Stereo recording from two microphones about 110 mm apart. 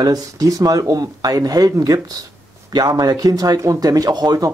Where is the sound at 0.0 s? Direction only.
35° right (ahead or behind).